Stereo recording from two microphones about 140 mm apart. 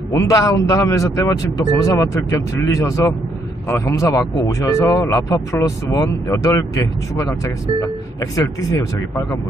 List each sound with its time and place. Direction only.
0.1 s speech: 25° left (ahead or behind)